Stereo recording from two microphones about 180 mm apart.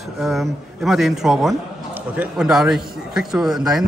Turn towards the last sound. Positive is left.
turn(degrees=0)  # may be behind; listen again after turning